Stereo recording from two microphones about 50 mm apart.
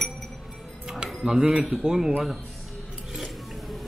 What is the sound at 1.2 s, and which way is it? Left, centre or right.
Speech, centre.